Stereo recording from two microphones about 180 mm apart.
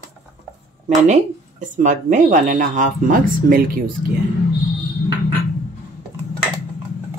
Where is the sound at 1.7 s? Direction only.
45° right (ahead or behind).